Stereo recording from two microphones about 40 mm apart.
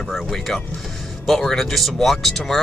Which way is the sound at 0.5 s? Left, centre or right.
Centre.